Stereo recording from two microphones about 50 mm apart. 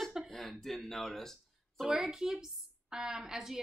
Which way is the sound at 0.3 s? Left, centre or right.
Centre.